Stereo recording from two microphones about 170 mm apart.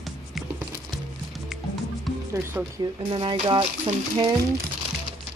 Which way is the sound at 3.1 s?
30° right (ahead or behind).